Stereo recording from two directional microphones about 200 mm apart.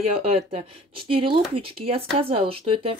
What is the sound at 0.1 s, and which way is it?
A woman's voice, 30° right (ahead or behind).